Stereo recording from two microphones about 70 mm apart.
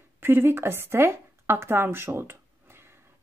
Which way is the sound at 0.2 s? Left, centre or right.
Right.